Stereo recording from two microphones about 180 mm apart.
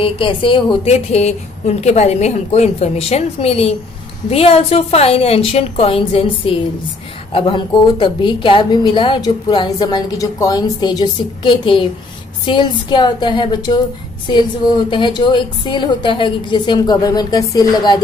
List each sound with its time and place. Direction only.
0.0 s a woman's voice: 30° left (ahead or behind)